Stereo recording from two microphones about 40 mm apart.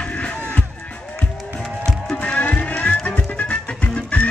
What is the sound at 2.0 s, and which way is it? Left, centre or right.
Music, left.